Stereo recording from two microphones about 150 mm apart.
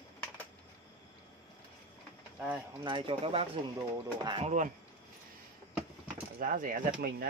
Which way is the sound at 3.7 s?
30° right (ahead or behind).